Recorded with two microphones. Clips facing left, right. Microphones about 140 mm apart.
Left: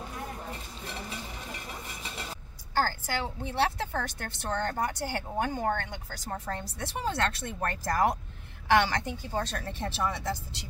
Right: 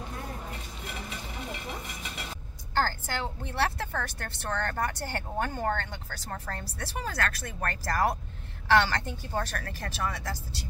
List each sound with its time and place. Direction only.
2.7 s a woman's voice: 10° left (ahead or behind)